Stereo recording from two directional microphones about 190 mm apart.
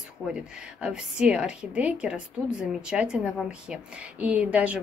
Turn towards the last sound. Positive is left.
turn(degrees=-5)  # may be behind; listen again after turning